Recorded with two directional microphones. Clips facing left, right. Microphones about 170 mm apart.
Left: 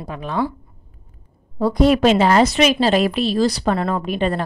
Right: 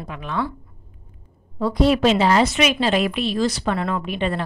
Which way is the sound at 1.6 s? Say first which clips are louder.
Left 3 dB; 45° left (ahead or behind).